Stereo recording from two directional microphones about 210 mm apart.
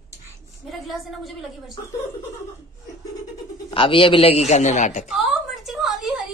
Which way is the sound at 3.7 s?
25° left (ahead or behind).